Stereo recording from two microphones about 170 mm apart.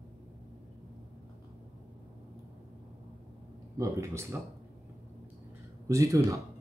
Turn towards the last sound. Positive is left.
turn(degrees=-20)  # may be behind; listen again after turning